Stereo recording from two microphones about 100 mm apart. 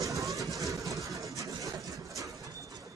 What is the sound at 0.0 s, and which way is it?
Vehicle, 35° right (ahead or behind).